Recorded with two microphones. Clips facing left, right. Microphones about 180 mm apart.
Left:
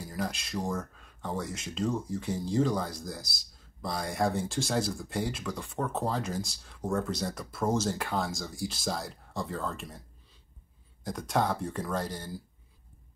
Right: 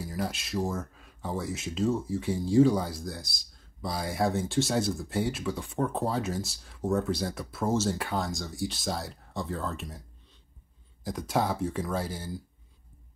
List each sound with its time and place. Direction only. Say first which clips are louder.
0.0 s speech: right 2 dB; 5° right (ahead or behind)
11.1 s speech: right 1 dB; centre (ahead or behind)